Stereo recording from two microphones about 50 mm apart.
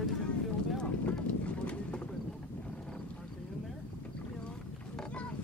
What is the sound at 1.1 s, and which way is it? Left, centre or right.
Clip-clop, left.